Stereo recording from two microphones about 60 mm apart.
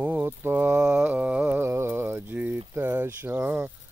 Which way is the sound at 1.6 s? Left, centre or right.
Right.